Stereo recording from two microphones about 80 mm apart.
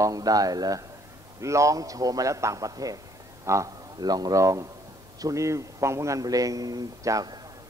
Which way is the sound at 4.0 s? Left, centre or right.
Right.